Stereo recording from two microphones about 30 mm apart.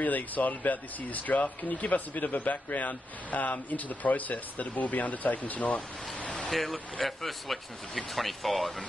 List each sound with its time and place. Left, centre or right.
0.0 s speech: left
6.5 s speech: centre